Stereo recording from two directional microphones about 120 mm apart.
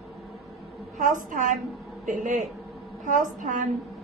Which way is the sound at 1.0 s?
90° right.